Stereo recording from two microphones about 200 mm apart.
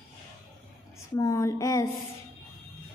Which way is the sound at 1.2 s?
15° left (ahead or behind).